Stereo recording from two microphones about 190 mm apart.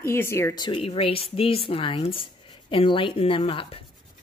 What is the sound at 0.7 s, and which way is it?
Speech, 30° left (ahead or behind).